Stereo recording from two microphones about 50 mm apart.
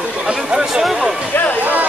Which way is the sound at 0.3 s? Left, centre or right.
Centre.